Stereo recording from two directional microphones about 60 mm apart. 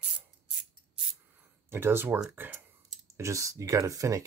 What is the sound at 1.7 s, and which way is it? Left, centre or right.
Speech, right.